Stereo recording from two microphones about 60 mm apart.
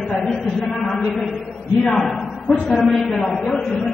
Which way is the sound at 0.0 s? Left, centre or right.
Centre.